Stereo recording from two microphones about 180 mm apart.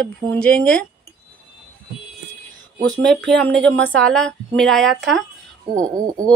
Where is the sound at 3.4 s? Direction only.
5° left (ahead or behind).